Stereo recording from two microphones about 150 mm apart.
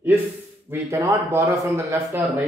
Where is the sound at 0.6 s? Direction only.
20° right (ahead or behind).